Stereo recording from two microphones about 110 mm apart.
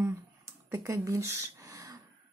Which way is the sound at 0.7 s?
25° right (ahead or behind).